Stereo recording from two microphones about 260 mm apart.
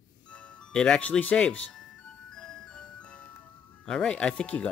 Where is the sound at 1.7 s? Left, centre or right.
Centre.